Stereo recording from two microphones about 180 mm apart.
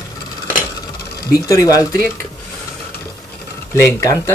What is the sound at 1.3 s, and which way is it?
Speech, 20° left (ahead or behind).